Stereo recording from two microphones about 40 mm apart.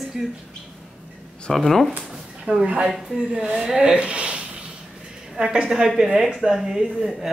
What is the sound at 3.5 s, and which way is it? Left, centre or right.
A woman's voice, centre.